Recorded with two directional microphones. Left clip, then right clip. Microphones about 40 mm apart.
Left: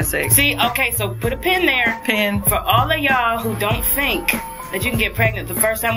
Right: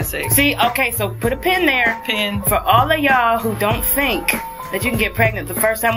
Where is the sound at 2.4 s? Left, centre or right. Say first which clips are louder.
Right 5 dB; right.